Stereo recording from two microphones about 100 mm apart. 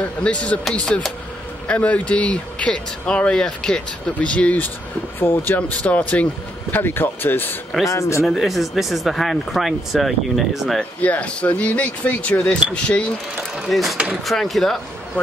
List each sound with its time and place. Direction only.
0.2 s speech: 10° left (ahead or behind)
5.2 s speech: 25° left (ahead or behind)
5.6 s speech: 15° left (ahead or behind)
7.9 s speech: 30° left (ahead or behind)
8.3 s speech: centre (ahead or behind)
10.8 s speech: 15° left (ahead or behind)
13.6 s speech: centre (ahead or behind)